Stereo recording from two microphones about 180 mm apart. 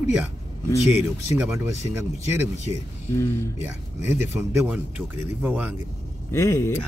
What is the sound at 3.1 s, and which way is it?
Speech, 15° left (ahead or behind).